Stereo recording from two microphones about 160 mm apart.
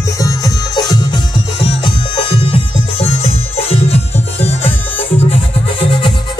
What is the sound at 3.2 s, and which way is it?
Music, 40° left (ahead or behind).